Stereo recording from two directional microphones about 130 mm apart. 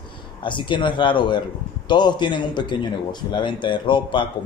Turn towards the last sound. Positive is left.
turn(degrees=40)  # may be behind; listen again after turning